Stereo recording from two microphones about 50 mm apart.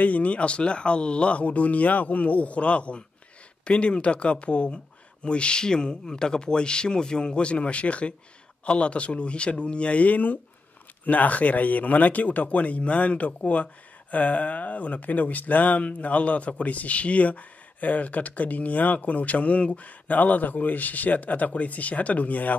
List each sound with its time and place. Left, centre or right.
0.0 s speech: left